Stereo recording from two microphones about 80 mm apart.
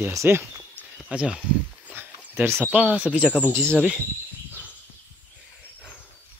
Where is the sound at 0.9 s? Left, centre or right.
Centre.